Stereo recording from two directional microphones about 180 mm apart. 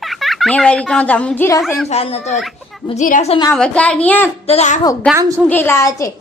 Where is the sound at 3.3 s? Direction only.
25° left (ahead or behind).